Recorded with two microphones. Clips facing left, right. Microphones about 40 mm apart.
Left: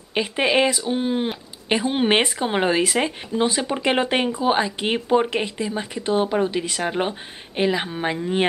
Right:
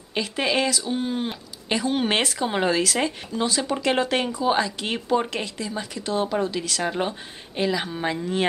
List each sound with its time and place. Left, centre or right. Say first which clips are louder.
0.1 s speech: left 4 dB; left